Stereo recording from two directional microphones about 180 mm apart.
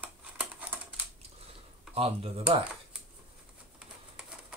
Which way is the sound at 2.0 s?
35° right (ahead or behind).